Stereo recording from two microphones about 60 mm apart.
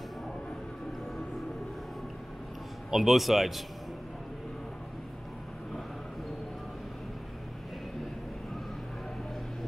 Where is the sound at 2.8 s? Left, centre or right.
Centre.